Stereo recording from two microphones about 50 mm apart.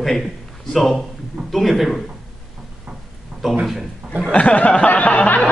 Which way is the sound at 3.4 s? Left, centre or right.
Centre.